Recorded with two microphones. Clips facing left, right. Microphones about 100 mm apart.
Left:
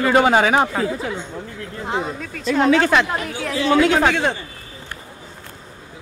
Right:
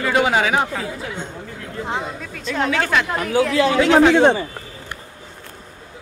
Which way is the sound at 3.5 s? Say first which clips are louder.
Left 1 dB; 90° right.